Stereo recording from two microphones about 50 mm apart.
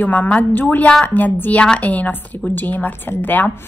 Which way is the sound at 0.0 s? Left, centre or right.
Left.